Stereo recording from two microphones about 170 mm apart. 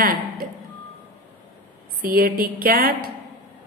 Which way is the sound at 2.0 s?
55° right (ahead or behind).